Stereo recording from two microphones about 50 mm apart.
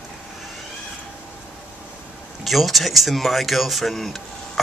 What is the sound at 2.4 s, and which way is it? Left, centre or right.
Speech, centre.